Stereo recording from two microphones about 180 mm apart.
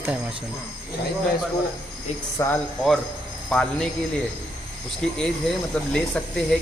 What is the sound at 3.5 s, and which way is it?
Speech, 5° left (ahead or behind).